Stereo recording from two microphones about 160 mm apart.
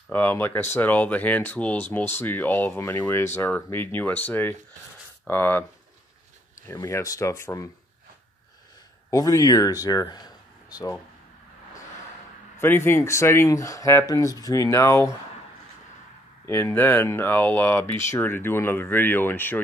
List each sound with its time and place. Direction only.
0.1 s speech: 10° left (ahead or behind)
6.7 s speech: 20° left (ahead or behind)
9.1 s speech: 20° left (ahead or behind)
12.5 s speech: 15° left (ahead or behind)
16.4 s speech: 15° left (ahead or behind)